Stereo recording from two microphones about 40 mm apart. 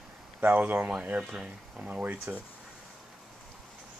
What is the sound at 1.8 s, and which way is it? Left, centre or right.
Speech, right.